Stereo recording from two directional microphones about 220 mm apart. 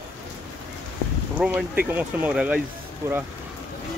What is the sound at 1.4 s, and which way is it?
Speech, 5° right (ahead or behind).